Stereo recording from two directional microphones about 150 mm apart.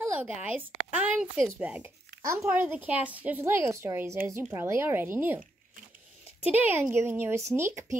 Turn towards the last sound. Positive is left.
turn(degrees=-20)  # may be behind; listen again after turning